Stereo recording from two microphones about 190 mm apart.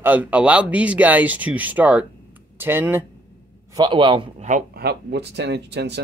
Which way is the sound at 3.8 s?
25° right (ahead or behind).